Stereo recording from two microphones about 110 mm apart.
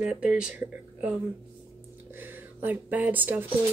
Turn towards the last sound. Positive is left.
turn(degrees=-15)  # may be behind; listen again after turning